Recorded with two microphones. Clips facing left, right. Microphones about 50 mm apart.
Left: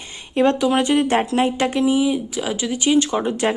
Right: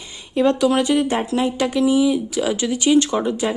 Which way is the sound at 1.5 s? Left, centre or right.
Left.